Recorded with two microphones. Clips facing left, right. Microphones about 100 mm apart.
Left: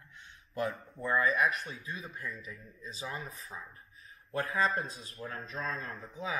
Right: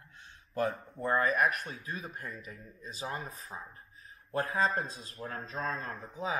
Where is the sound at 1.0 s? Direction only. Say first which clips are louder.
Right 1 dB; 45° right (ahead or behind).